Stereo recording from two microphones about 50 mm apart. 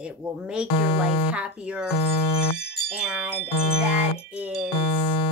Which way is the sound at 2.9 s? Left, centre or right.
Right.